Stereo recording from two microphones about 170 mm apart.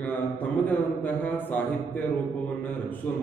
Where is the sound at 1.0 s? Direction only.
10° left (ahead or behind).